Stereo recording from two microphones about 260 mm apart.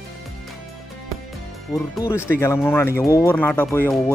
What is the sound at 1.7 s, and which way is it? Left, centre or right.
Speech, centre.